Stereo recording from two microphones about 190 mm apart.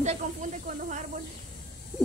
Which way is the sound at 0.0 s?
40° right (ahead or behind).